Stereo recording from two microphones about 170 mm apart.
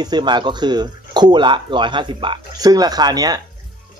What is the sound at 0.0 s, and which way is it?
Speech, 25° right (ahead or behind).